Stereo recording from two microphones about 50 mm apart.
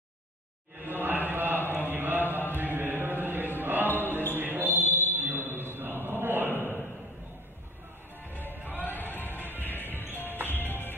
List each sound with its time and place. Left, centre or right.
0.8 s a sound: right
1.9 s mantra: right
2.5 s music: right
3.8 s a sound: left
4.4 s a sound: right
5.5 s chant: right
8.3 s music: left
8.7 s music: right
9.0 s music: left